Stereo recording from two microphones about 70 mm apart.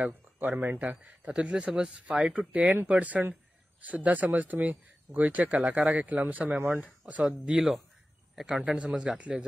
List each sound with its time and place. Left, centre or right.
0.0 s a man's voice: right
7.2 s a man's voice: centre